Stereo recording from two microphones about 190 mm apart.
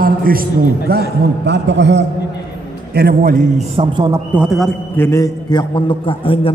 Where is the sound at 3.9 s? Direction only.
20° right (ahead or behind).